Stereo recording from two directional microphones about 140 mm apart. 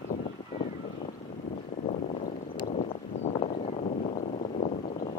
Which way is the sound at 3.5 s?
60° left (ahead or behind).